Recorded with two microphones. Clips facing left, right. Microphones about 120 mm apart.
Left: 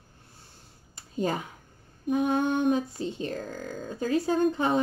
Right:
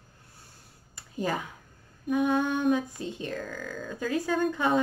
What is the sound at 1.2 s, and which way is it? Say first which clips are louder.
Speech: left 2 dB; 30° left (ahead or behind).